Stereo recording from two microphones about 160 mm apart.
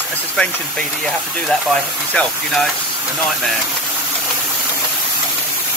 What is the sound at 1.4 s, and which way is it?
Speech, 5° left (ahead or behind).